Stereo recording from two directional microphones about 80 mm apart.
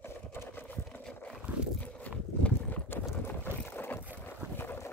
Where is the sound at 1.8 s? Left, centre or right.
Centre.